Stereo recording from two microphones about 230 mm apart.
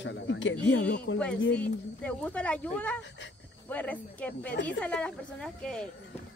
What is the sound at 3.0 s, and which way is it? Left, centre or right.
Speech, left.